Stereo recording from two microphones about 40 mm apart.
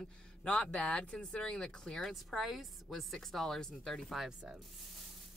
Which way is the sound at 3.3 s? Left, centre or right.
Centre.